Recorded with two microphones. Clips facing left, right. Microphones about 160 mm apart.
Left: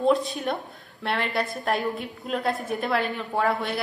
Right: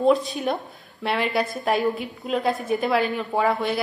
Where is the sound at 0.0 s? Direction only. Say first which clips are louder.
Right 3 dB; centre (ahead or behind).